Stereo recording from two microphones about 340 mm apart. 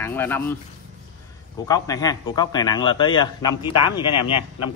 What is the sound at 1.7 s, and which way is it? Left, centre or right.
Speech, centre.